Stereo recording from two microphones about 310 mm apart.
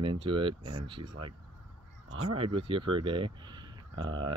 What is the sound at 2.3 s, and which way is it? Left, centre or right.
Speech, centre.